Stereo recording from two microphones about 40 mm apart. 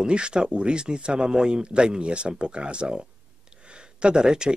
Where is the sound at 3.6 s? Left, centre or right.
Right.